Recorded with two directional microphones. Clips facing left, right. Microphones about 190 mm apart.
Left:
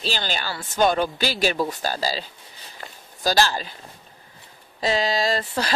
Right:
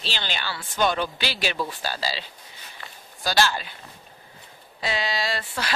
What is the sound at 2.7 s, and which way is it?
Walk, 40° left (ahead or behind).